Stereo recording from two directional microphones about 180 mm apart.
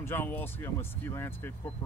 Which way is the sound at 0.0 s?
10° left (ahead or behind).